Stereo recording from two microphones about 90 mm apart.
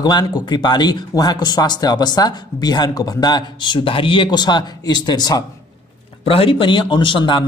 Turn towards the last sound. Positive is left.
turn(degrees=65)  # may be behind; listen again after turning